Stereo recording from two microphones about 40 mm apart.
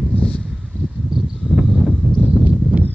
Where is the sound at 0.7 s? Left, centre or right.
Left.